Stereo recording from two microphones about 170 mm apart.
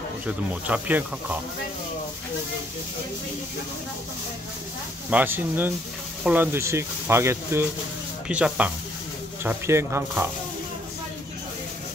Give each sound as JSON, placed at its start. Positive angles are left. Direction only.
{"t": 0.7, "sound": "speech", "side_deg": -10}
{"t": 5.1, "sound": "speech", "side_deg": -10}